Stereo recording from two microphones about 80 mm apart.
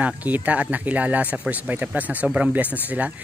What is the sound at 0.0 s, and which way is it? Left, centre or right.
Speech, centre.